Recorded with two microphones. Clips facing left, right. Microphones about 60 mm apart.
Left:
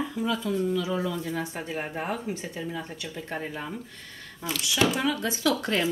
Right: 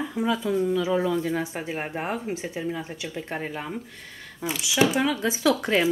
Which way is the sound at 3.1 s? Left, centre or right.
Right.